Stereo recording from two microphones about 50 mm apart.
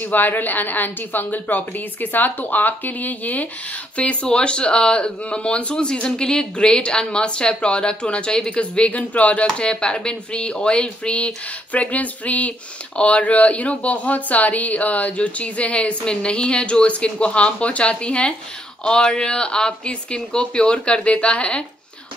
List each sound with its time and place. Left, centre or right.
0.0 s speech: left
9.5 s speech: centre